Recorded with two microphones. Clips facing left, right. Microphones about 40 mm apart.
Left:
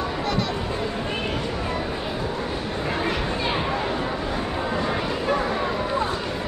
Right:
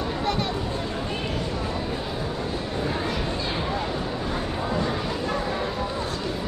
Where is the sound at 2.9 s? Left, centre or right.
Left.